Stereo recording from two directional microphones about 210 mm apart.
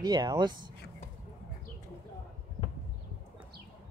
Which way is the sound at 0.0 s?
20° right (ahead or behind).